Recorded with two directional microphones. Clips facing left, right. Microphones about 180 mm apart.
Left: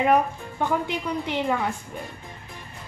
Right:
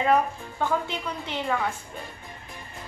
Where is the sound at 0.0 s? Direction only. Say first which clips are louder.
Left 2 dB; 15° left (ahead or behind).